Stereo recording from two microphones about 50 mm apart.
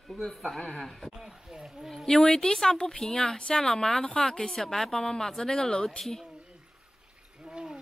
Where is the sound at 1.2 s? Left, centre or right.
Centre.